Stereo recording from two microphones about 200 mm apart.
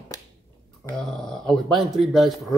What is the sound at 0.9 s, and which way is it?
Speech, centre (ahead or behind).